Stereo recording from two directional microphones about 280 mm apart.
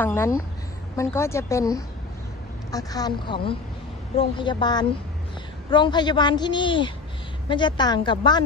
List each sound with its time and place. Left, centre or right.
0.0 s a woman's voice: centre